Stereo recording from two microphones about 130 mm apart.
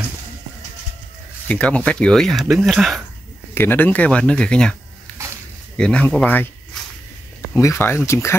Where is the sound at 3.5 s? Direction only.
15° left (ahead or behind).